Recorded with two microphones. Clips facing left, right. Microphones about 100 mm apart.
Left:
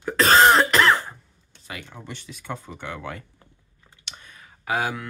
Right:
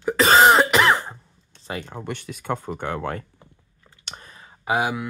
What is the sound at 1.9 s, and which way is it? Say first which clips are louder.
Speech: right 7 dB; 55° right (ahead or behind).